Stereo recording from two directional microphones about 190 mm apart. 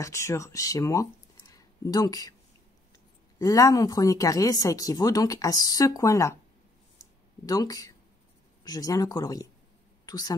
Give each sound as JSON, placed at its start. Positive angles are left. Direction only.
{"t": 0.0, "sound": "speech", "side_deg": 15}
{"t": 3.3, "sound": "speech", "side_deg": 15}
{"t": 7.4, "sound": "a woman's voice", "side_deg": 20}